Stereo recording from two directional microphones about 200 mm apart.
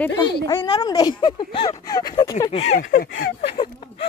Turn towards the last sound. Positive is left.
turn(degrees=30)  # may be behind; listen again after turning